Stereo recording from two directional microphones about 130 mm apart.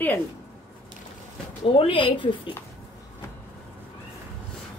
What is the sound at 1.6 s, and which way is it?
Speech, 45° left (ahead or behind).